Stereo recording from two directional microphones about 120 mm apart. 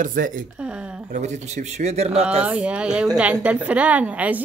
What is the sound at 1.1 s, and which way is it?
Speech, 75° right (ahead or behind).